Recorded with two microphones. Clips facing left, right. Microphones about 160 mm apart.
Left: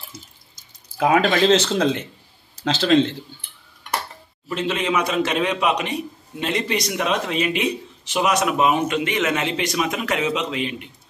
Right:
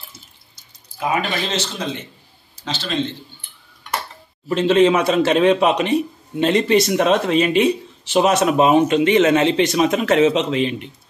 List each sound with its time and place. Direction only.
0.9 s speech: 75° left (ahead or behind)
2.6 s speech: 90° left
4.6 s a man's voice: 30° right (ahead or behind)